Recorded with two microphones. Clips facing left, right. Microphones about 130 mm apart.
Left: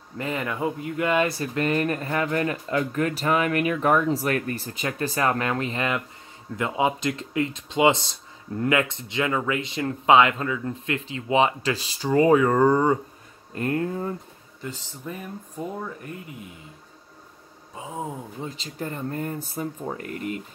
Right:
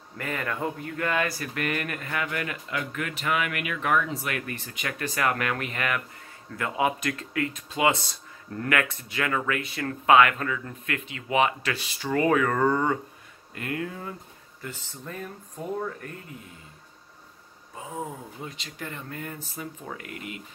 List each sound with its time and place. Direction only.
0.2 s speech: 20° left (ahead or behind)
13.6 s speech: 35° left (ahead or behind)
14.6 s speech: 15° left (ahead or behind)
17.7 s speech: 20° left (ahead or behind)
18.5 s speech: 35° left (ahead or behind)